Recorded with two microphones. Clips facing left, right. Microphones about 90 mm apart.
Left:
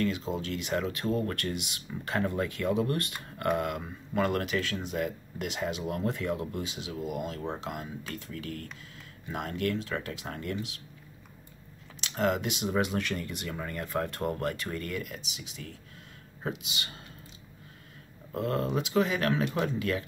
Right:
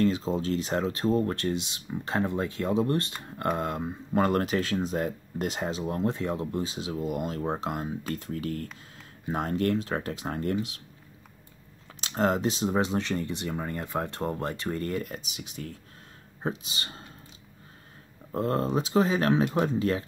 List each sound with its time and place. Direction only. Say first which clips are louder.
0.0 s speech: right 5 dB; 35° right (ahead or behind)
7.2 s speech: right 4 dB; 45° right (ahead or behind)
12.0 s speech: right 3 dB; 35° right (ahead or behind)
18.3 s speech: right 3 dB; 30° right (ahead or behind)